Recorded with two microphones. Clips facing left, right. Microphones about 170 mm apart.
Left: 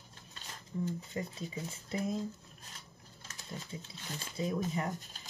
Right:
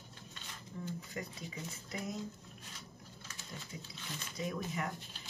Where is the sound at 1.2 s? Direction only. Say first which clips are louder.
Left 5 dB; 25° left (ahead or behind).